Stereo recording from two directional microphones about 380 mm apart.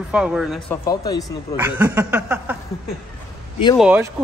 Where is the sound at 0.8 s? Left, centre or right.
Centre.